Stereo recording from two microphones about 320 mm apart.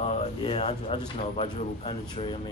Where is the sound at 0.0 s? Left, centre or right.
Centre.